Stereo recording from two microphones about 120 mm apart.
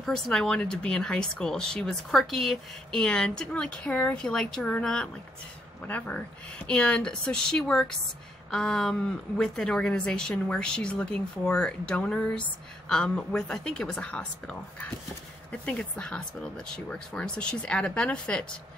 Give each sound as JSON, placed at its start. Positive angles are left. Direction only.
{"t": 0.0, "sound": "speech", "side_deg": 5}